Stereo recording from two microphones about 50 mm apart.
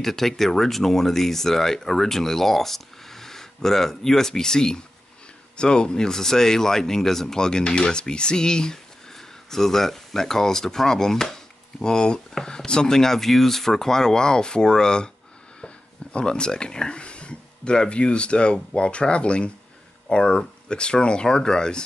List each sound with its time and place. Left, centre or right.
0.0 s speech: centre